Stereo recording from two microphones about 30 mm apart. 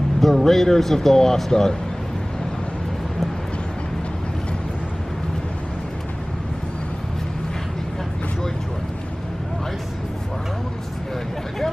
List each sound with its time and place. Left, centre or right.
0.2 s speech: centre